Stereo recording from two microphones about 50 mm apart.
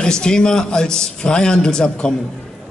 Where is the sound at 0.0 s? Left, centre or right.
Centre.